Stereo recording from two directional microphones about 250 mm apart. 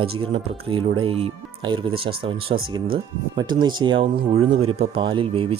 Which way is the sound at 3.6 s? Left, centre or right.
Centre.